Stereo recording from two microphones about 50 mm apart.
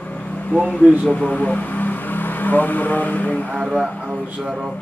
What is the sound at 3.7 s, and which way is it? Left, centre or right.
Speech, centre.